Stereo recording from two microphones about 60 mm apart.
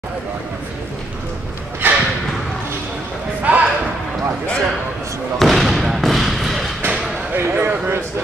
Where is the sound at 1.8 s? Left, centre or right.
Right.